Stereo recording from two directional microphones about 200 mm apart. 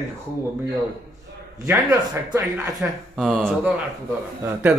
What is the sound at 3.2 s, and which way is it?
Speech, centre (ahead or behind).